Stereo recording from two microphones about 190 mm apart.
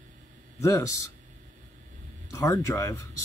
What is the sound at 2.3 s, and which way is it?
Speech, 15° left (ahead or behind).